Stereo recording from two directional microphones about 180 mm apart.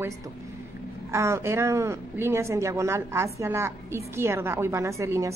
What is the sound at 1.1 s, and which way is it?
A woman's voice, 15° right (ahead or behind).